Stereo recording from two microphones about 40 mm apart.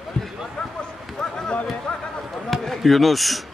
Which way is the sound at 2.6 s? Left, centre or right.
Centre.